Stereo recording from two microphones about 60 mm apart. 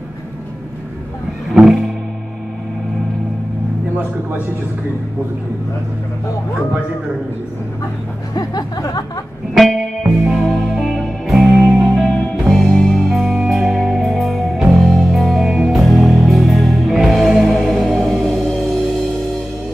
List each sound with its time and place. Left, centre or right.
1.5 s music: centre
8.4 s speech: left
10.0 s music: centre
10.5 s music: centre
12.1 s music: left
12.4 s music: centre
13.1 s music: centre